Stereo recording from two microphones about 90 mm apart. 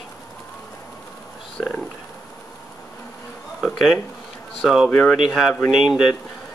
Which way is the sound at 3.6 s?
Centre (ahead or behind).